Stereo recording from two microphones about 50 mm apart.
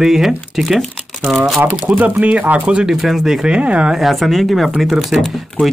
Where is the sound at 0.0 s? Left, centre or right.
Centre.